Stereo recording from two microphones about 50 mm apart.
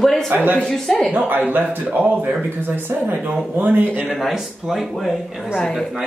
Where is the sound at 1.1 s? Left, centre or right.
Right.